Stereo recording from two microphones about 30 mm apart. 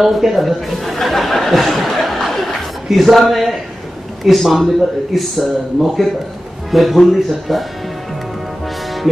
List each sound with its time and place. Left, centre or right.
0.0 s speech: centre
1.0 s a sound: centre
2.9 s a man's voice: centre
9.1 s speech: centre